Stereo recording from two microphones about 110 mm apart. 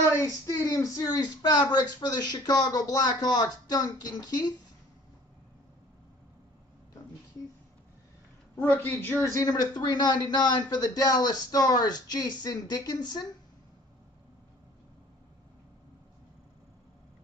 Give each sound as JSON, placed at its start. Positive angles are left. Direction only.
{"t": 0.1, "sound": "a man's voice", "side_deg": 30}
{"t": 8.5, "sound": "a man's voice", "side_deg": 20}